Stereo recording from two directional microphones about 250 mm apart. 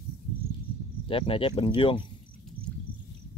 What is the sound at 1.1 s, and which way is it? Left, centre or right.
Speech, left.